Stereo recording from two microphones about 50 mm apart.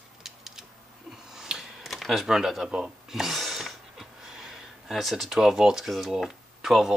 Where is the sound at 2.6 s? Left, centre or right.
Right.